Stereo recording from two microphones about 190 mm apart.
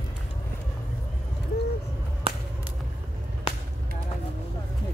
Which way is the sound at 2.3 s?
30° right (ahead or behind).